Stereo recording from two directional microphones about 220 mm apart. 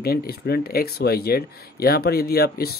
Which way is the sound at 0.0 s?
45° left (ahead or behind).